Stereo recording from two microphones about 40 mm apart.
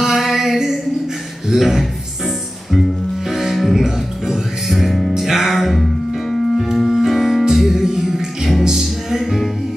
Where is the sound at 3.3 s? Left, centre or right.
Centre.